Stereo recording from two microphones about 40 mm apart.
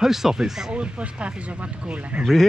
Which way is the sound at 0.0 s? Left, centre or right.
Centre.